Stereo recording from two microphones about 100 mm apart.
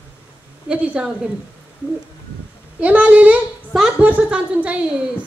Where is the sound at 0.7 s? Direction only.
15° right (ahead or behind).